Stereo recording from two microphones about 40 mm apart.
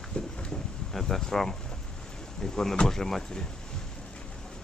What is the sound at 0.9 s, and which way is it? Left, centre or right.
Speech, centre.